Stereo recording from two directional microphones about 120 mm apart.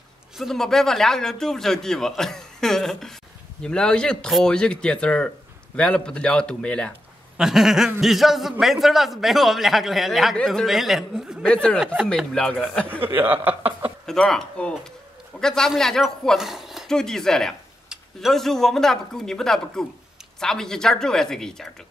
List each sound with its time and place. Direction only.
0.4 s speech: 5° left (ahead or behind)
7.3 s speech: 5° right (ahead or behind)
11.4 s speech: 10° left (ahead or behind)
11.8 s speech: 5° right (ahead or behind)
12.2 s speech: 5° left (ahead or behind)
13.0 s speech: 15° right (ahead or behind)
14.0 s speech: 5° left (ahead or behind)